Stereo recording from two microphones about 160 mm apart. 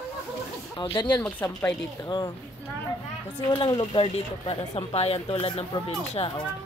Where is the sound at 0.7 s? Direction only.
30° left (ahead or behind).